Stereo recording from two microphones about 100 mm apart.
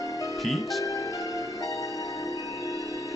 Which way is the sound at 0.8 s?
35° left (ahead or behind).